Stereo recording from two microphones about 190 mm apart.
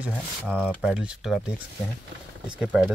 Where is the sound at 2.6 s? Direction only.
5° right (ahead or behind).